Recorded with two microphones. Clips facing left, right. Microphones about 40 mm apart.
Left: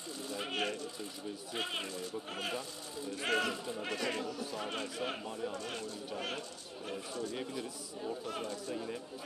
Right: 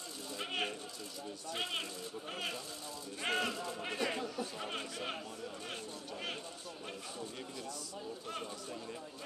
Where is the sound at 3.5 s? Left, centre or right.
Centre.